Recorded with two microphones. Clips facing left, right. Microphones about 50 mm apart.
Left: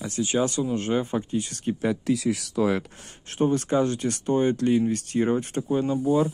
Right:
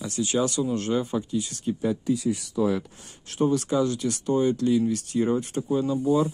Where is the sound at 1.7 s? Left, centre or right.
Left.